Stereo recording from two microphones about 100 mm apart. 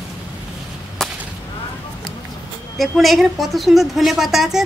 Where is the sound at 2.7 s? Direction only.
Centre (ahead or behind).